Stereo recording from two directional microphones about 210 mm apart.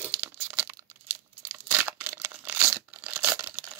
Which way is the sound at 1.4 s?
10° right (ahead or behind).